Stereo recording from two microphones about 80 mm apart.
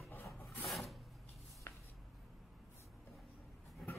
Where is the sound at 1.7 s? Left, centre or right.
Left.